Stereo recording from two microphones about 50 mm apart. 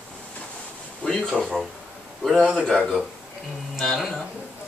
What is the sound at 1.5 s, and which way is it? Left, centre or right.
A man's voice, centre.